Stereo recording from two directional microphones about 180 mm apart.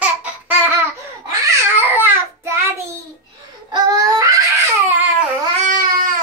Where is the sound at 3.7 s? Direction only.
25° right (ahead or behind).